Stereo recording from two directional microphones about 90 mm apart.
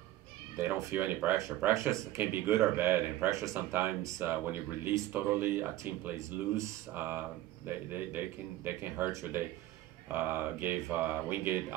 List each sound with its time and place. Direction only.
0.6 s speech: 30° right (ahead or behind)
2.3 s speech: 20° right (ahead or behind)
3.3 s speech: 35° right (ahead or behind)
3.5 s speech: 20° right (ahead or behind)
10.1 s speech: 25° right (ahead or behind)